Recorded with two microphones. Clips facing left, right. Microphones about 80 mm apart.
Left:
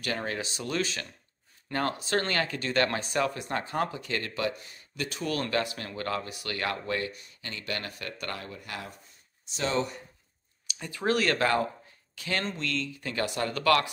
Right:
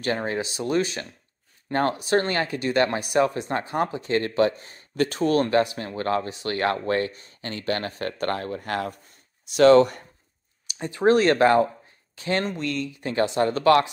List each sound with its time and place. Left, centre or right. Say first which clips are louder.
0.0 s speech: right 6 dB; right
5.3 s speech: right 7 dB; right
9.5 s speech: right 15 dB; right
10.8 s speech: right 9 dB; right